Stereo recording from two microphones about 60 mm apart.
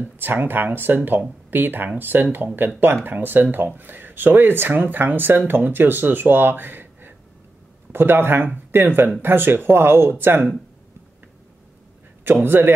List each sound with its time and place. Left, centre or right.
0.0 s speech: right
12.4 s speech: right